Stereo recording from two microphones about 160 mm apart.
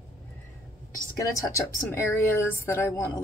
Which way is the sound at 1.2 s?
20° left (ahead or behind).